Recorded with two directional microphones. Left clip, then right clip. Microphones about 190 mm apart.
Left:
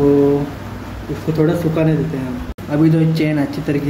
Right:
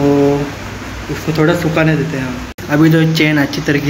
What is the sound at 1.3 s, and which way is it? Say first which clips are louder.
Speech: right 4 dB; 5° left (ahead or behind).